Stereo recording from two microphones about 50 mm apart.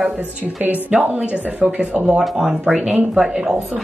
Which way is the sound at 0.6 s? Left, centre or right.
Right.